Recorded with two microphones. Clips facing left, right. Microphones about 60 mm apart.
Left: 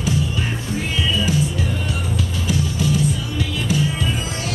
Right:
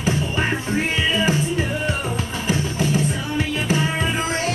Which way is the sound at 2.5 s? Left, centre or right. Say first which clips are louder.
Even; right.